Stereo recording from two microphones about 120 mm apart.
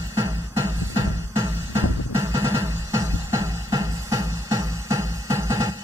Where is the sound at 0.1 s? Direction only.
20° right (ahead or behind).